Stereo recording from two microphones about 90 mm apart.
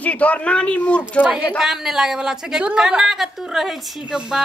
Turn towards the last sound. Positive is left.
turn(degrees=-5)  # may be behind; listen again after turning